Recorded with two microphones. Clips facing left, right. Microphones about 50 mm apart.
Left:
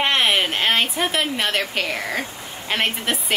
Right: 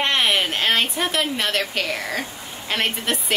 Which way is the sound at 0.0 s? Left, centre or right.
Centre.